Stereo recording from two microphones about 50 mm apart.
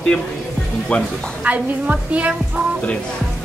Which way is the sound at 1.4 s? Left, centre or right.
Right.